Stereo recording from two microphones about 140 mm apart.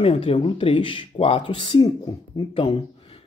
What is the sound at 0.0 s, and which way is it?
Speech, 45° left (ahead or behind).